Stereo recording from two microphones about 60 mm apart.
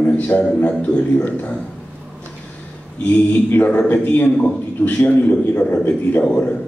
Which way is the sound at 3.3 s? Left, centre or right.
Left.